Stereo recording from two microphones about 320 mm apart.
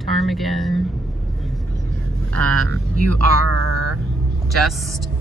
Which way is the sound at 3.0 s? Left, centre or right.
Right.